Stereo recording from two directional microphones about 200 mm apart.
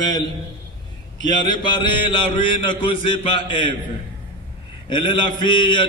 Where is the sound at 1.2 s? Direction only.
20° left (ahead or behind).